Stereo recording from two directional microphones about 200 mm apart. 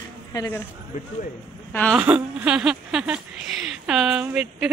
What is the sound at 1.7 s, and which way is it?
Speech, 10° left (ahead or behind).